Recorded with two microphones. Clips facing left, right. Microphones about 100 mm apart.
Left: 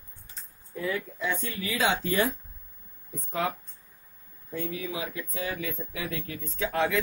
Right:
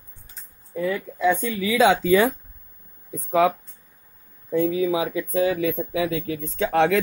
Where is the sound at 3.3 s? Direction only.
90° right.